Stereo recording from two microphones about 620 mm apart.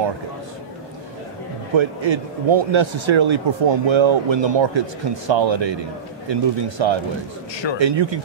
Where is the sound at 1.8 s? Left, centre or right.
Right.